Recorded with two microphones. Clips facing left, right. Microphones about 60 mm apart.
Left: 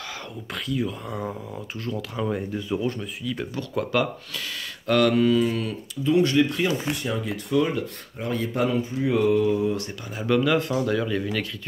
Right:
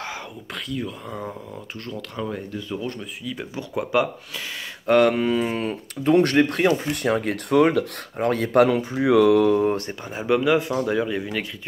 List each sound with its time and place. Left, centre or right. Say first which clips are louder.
0.7 s speech: left 3 dB; centre
3.5 s speech: right 3 dB; centre; by 5.8 s right
6.0 s speech: right 3 dB; right
9.7 s speech: right 3 dB; right
10.2 s speech: right 2 dB; centre